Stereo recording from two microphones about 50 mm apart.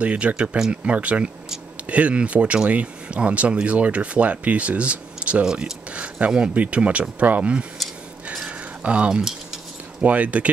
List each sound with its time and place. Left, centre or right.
0.0 s speech: right
5.4 s speech: centre
8.5 s a sound: right
9.1 s cutlery: centre
10.0 s speech: right